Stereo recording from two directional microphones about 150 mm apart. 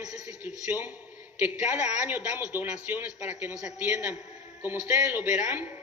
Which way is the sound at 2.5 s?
10° right (ahead or behind).